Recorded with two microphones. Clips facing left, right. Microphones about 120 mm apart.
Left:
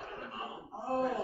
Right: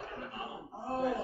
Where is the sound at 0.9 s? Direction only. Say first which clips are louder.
Even; centre (ahead or behind).